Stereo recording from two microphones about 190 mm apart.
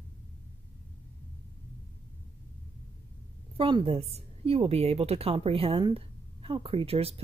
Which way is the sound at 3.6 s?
25° right (ahead or behind).